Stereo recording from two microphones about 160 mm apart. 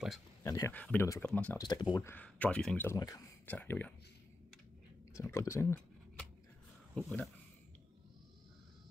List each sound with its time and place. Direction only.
0.4 s speech: 20° left (ahead or behind)
1.2 s speech: 10° left (ahead or behind)
1.6 s speech: 25° left (ahead or behind)
2.0 s speech: 10° left (ahead or behind)
2.9 s speech: 20° left (ahead or behind)
5.1 s speech: 20° left (ahead or behind)
7.0 s speech: 5° left (ahead or behind)